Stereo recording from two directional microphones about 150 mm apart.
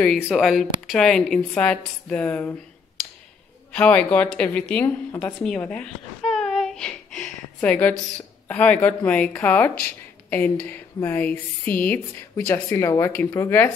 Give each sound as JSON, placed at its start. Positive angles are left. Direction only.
{"t": 0.0, "sound": "speech", "side_deg": 0}
{"t": 3.7, "sound": "a woman's voice", "side_deg": 10}
{"t": 5.4, "sound": "speech", "side_deg": 5}